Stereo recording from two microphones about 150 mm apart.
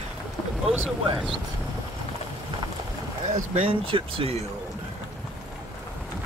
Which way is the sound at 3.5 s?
40° right (ahead or behind).